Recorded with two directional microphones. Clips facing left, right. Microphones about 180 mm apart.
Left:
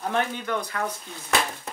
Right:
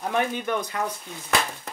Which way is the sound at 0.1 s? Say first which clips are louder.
Right 3 dB; 15° right (ahead or behind).